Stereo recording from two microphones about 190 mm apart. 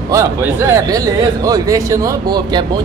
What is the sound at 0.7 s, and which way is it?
A man's voice, 20° right (ahead or behind).